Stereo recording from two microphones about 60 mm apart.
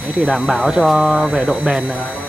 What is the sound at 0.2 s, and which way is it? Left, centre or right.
Speech, centre.